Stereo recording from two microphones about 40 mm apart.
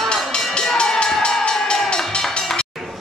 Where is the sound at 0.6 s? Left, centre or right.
Centre.